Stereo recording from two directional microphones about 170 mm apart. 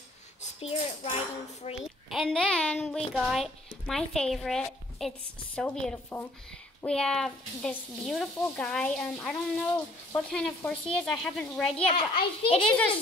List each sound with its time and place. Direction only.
0.4 s speech: 40° left (ahead or behind)
1.8 s a woman's voice: centre (ahead or behind)
11.9 s speech: 30° left (ahead or behind)